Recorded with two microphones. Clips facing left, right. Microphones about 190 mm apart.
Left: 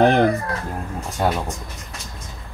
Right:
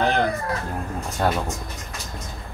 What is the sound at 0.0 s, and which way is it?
Speech, 55° left (ahead or behind).